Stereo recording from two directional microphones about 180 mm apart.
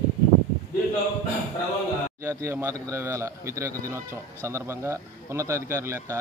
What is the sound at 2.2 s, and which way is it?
A man's voice, 15° right (ahead or behind).